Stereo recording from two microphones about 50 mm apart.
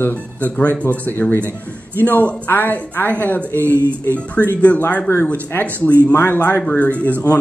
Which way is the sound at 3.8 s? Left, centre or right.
Right.